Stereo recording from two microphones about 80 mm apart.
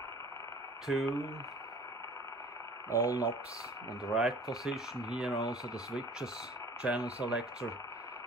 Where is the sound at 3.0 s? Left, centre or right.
Right.